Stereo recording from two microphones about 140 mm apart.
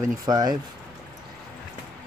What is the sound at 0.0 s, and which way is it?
Speech, 30° right (ahead or behind).